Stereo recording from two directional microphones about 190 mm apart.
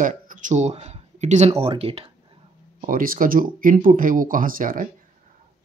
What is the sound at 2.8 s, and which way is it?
Speech, 45° right (ahead or behind).